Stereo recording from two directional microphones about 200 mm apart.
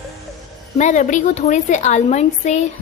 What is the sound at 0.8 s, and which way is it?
A woman's voice, 35° left (ahead or behind).